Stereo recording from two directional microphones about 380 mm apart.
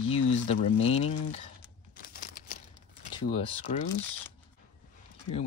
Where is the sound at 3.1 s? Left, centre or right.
Centre.